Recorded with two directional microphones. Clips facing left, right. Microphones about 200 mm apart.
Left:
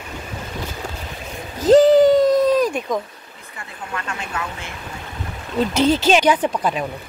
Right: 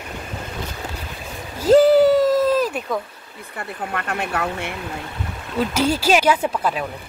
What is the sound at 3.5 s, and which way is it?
Speech, 55° right (ahead or behind).